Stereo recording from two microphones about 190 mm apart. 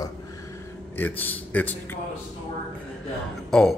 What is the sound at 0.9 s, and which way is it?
Speech, 10° left (ahead or behind).